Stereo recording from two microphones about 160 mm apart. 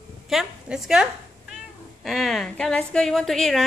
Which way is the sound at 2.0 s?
Centre (ahead or behind).